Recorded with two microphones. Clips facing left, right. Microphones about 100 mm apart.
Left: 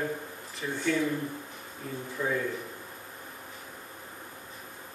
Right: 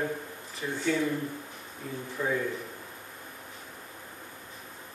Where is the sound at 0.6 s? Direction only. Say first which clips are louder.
Even; 5° right (ahead or behind).